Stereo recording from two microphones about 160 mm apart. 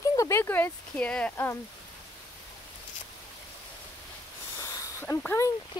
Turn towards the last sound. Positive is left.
turn(degrees=10)  # may be behind; listen again after turning